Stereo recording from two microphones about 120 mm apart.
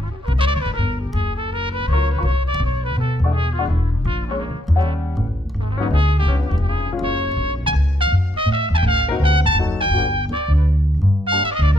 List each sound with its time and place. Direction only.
0.3 s music: 45° right (ahead or behind)
5.9 s brass instrument: 45° right (ahead or behind)
6.7 s music: 45° right (ahead or behind)
9.2 s trumpet: 45° right (ahead or behind)
9.8 s music: 45° right (ahead or behind)